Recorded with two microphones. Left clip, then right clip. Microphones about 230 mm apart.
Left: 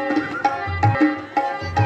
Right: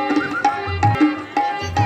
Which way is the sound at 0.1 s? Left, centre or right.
Right.